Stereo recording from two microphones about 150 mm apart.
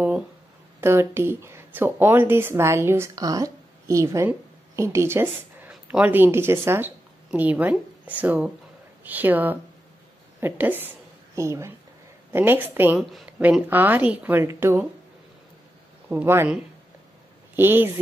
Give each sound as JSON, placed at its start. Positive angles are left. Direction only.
{"t": 0.7, "sound": "speech", "side_deg": -15}
{"t": 13.0, "sound": "speech", "side_deg": 0}
{"t": 16.1, "sound": "speech", "side_deg": -15}
{"t": 17.6, "sound": "speech", "side_deg": -15}